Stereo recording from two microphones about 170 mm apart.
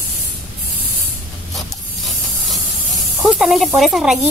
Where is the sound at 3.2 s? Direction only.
Centre (ahead or behind).